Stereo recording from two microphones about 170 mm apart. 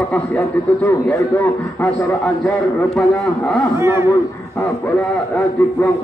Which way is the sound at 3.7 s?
15° right (ahead or behind).